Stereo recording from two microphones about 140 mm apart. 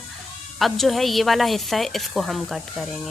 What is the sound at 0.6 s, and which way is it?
Speech, centre (ahead or behind).